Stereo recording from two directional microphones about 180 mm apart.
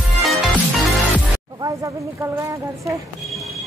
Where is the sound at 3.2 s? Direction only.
Centre (ahead or behind).